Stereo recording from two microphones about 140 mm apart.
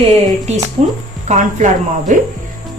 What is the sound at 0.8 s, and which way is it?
Speech, 50° right (ahead or behind).